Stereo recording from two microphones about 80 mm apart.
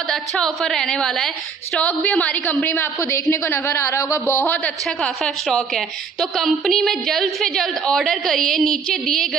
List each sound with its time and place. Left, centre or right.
0.1 s a woman's voice: centre
1.8 s a woman's voice: centre
3.0 s a woman's voice: left
5.0 s a woman's voice: centre